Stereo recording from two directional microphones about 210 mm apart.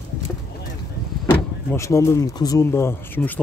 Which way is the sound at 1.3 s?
10° left (ahead or behind).